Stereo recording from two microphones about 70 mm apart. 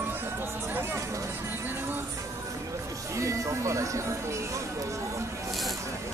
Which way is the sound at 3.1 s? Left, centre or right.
Right.